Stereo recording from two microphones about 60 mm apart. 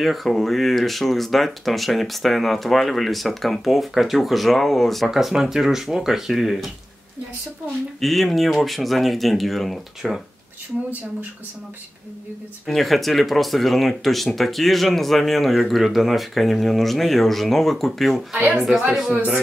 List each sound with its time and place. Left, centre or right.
0.0 s speech: centre
8.0 s speech: centre
12.6 s speech: centre
18.3 s a woman's voice: right
18.6 s a woman's voice: centre